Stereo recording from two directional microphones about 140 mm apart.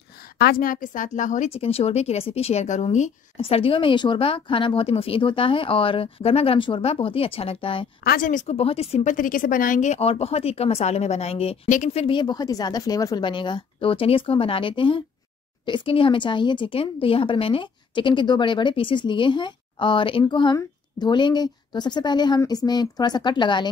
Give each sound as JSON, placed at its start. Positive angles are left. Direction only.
{"t": 0.4, "sound": "a woman's voice", "side_deg": 90}
{"t": 1.5, "sound": "speech", "side_deg": 45}
{"t": 3.3, "sound": "a woman's voice", "side_deg": 40}
{"t": 8.0, "sound": "speech", "side_deg": 85}
{"t": 8.5, "sound": "speech", "side_deg": 45}
{"t": 9.0, "sound": "a woman's voice", "side_deg": 75}